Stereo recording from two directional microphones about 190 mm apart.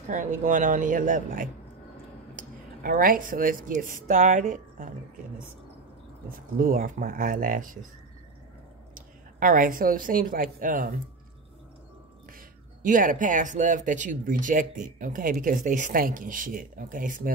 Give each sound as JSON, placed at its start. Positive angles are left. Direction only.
{"t": 0.1, "sound": "speech", "side_deg": -40}
{"t": 6.3, "sound": "speech", "side_deg": -45}
{"t": 9.4, "sound": "speech", "side_deg": -45}
{"t": 12.4, "sound": "speech", "side_deg": -45}